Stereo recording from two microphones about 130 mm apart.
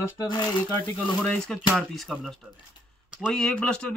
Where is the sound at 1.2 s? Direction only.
5° left (ahead or behind).